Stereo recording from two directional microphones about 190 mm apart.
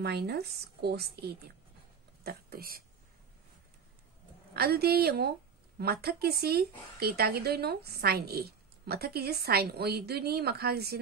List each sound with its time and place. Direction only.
0.0 s speech: 60° right (ahead or behind)
4.6 s speech: 55° right (ahead or behind)